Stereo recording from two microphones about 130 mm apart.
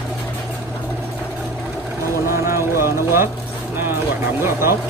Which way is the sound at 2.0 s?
20° right (ahead or behind).